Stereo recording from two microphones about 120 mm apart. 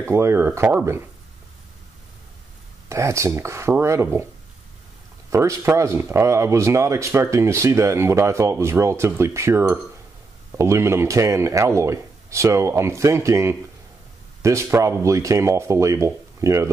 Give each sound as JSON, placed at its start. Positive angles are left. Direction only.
{"t": 0.0, "sound": "speech", "side_deg": -20}
{"t": 2.9, "sound": "speech", "side_deg": -25}
{"t": 5.3, "sound": "speech", "side_deg": -25}